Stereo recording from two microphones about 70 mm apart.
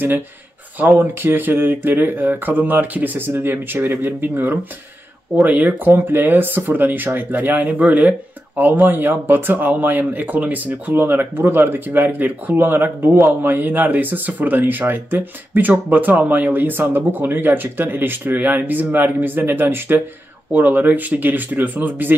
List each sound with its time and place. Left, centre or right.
0.7 s speech: right